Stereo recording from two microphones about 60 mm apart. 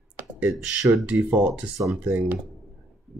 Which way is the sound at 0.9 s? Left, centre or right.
Right.